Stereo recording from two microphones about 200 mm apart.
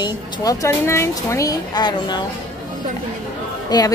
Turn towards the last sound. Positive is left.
turn(degrees=20)  # may be behind; listen again after turning